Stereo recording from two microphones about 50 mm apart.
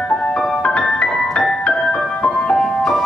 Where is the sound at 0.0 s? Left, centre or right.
Centre.